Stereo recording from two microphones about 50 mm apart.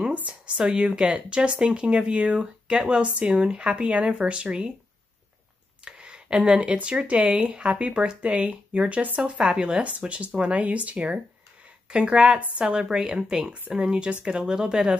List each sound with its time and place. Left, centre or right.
0.3 s speech: centre
5.9 s speech: centre